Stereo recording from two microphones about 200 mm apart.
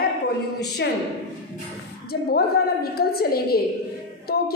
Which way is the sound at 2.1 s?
50° left (ahead or behind).